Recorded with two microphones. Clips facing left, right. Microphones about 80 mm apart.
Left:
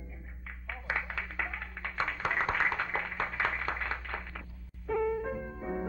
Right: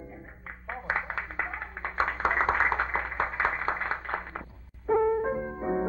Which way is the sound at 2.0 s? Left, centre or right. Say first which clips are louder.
Right 6 dB; right.